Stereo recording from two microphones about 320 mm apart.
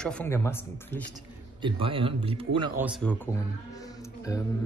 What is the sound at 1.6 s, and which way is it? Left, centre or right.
Speech, centre.